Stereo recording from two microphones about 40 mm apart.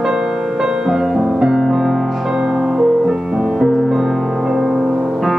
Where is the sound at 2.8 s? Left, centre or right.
Centre.